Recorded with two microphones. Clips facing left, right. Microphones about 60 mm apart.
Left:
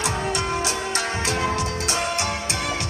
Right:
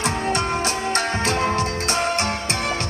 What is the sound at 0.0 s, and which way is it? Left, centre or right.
Music, right.